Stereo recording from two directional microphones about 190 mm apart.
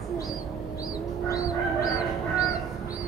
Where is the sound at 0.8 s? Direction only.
20° left (ahead or behind).